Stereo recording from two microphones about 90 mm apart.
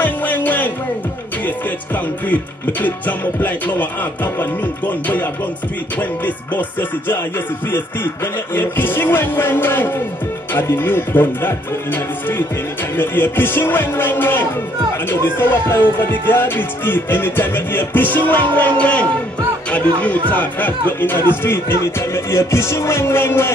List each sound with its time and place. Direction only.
0.0 s music: 20° left (ahead or behind)
2.2 s speech: 20° left (ahead or behind)
8.5 s speech: 25° left (ahead or behind)